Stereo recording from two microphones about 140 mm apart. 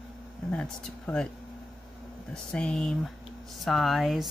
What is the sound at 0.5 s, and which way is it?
Speech, 5° left (ahead or behind).